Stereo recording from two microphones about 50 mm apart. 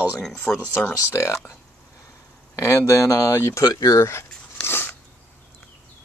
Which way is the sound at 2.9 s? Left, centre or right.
Left.